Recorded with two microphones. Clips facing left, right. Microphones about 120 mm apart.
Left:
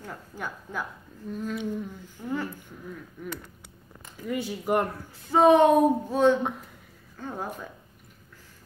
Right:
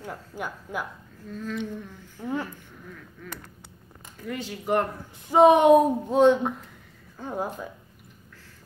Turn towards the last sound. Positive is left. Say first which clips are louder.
# right 4 dB
turn(degrees=-10)  # may be behind; listen again after turning